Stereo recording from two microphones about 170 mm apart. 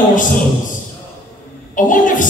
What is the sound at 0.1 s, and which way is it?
Speech, 50° left (ahead or behind).